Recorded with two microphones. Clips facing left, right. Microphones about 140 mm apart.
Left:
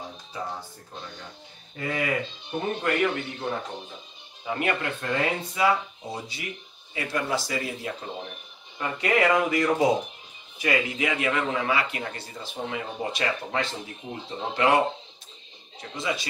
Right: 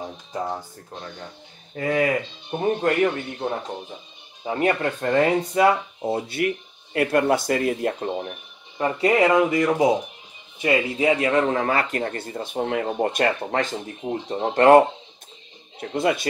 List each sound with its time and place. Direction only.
1.8 s a man's voice: 45° right (ahead or behind)
8.7 s a man's voice: 30° right (ahead or behind)
15.9 s speech: 55° right (ahead or behind)